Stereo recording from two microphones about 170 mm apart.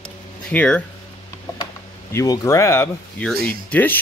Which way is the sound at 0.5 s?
10° left (ahead or behind).